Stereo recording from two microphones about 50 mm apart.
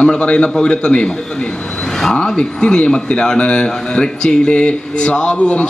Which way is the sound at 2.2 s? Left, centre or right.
Centre.